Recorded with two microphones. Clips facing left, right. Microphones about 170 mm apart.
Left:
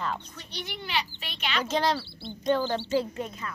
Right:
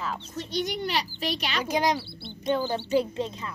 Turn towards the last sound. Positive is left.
turn(degrees=-25)  # may be behind; listen again after turning